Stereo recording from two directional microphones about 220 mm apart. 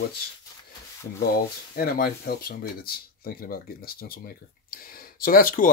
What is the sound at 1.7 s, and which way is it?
Speech, 45° left (ahead or behind).